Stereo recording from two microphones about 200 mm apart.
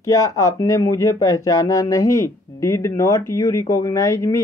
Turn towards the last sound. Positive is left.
turn(degrees=15)  # may be behind; listen again after turning